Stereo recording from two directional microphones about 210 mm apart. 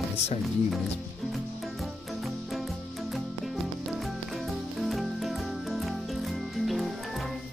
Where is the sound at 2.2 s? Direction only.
Centre (ahead or behind).